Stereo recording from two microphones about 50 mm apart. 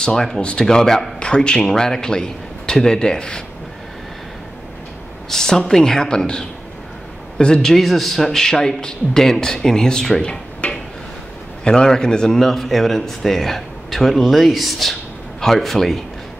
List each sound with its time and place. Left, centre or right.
0.0 s a man's voice: centre
5.3 s a man's voice: centre
7.7 s a man's voice: centre
10.6 s tick-tock: left
11.6 s speech: centre